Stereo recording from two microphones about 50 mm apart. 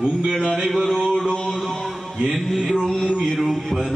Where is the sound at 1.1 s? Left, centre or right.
Centre.